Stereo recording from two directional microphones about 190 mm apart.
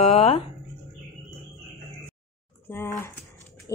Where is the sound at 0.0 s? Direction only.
30° left (ahead or behind).